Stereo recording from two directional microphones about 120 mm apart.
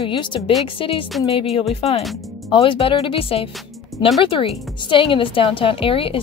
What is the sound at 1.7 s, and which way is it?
Speech, 60° left (ahead or behind).